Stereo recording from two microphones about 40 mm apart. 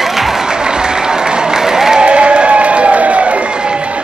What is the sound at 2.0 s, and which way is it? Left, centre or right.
Crowd, right.